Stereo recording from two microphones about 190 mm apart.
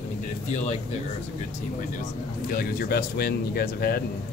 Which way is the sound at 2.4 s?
50° left (ahead or behind).